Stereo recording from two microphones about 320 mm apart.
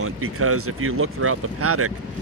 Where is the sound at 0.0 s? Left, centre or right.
Right.